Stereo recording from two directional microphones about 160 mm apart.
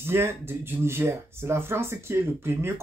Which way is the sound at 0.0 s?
15° right (ahead or behind).